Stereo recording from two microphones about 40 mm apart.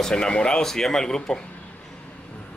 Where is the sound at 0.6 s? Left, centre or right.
Centre.